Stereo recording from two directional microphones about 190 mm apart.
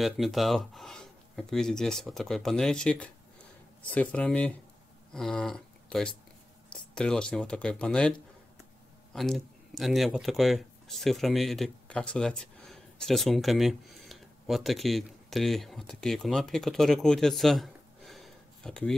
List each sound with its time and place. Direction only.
0.0 s speech: centre (ahead or behind)
9.1 s speech: centre (ahead or behind)